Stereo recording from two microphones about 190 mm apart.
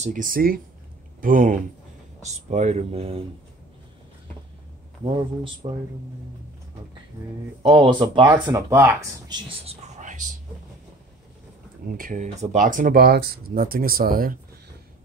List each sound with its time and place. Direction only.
0.0 s speech: 45° right (ahead or behind)
5.0 s speech: 25° right (ahead or behind)
7.6 s speech: 25° right (ahead or behind)
9.5 s whispering: 35° right (ahead or behind)
11.9 s speech: 45° right (ahead or behind)